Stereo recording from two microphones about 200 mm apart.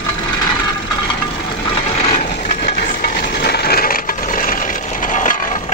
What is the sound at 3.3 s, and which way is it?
Wood, 50° left (ahead or behind).